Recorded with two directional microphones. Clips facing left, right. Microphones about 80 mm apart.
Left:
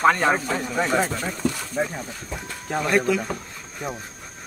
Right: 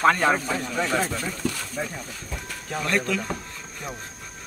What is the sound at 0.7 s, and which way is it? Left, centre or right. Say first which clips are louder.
Speech: left 3 dB; left.